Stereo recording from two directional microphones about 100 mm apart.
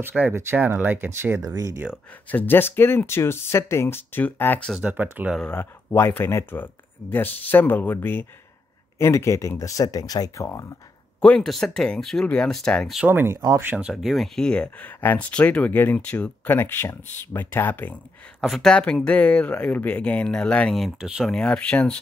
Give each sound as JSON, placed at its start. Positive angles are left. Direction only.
{"t": 0.3, "sound": "speech", "side_deg": -25}
{"t": 1.4, "sound": "speech", "side_deg": -35}
{"t": 2.2, "sound": "speech", "side_deg": 20}
{"t": 4.8, "sound": "speech", "side_deg": -20}
{"t": 5.6, "sound": "speech", "side_deg": 25}
{"t": 11.1, "sound": "speech", "side_deg": 10}
{"t": 13.0, "sound": "speech", "side_deg": -20}
{"t": 13.7, "sound": "speech", "side_deg": -15}
{"t": 14.0, "sound": "speech", "side_deg": 0}
{"t": 18.4, "sound": "speech", "side_deg": 5}
{"t": 20.7, "sound": "speech", "side_deg": -5}
{"t": 21.3, "sound": "speech", "side_deg": 10}